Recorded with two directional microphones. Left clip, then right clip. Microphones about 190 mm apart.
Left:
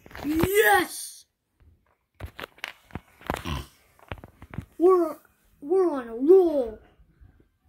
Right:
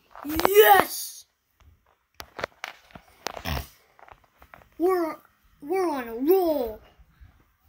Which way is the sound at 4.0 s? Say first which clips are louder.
Left 7 dB; 10° right (ahead or behind).